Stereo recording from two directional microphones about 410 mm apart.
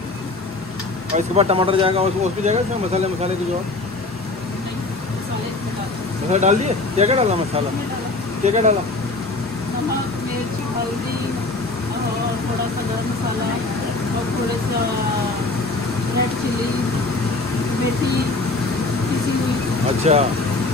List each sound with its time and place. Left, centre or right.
1.1 s speech: centre
6.3 s speech: centre
20.1 s speech: centre